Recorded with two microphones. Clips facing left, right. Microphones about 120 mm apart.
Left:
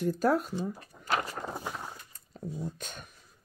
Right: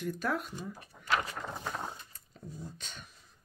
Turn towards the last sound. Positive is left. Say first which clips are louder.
# left 5 dB
turn(degrees=50)  # may be behind; listen again after turning